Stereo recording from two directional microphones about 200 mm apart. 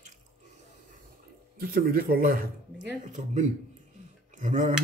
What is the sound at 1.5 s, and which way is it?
A man's voice, 45° right (ahead or behind).